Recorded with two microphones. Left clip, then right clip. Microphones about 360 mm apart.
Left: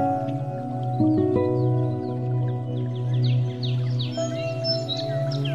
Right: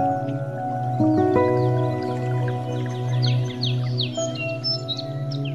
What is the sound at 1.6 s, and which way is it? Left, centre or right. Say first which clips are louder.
Music: right 3 dB; right.